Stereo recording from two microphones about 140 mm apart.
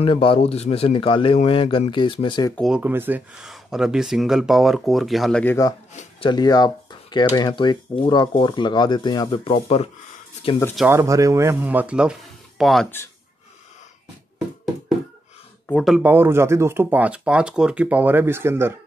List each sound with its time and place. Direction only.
0.0 s speech: 40° left (ahead or behind)
2.7 s speech: 15° right (ahead or behind)
5.4 s speech: 15° left (ahead or behind)
6.2 s speech: 30° left (ahead or behind)
10.9 s speech: 20° right (ahead or behind); by 12.8 s centre (ahead or behind)
15.7 s speech: centre (ahead or behind)
16.0 s speech: 15° right (ahead or behind)